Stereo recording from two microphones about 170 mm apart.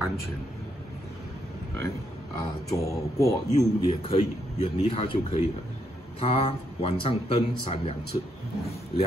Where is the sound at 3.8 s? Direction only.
35° left (ahead or behind).